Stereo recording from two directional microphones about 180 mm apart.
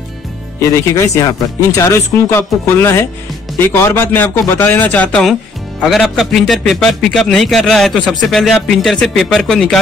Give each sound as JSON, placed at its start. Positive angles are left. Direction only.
{"t": 0.6, "sound": "a man's voice", "side_deg": 15}